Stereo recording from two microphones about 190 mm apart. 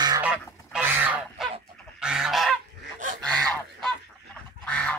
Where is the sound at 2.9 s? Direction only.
45° right (ahead or behind).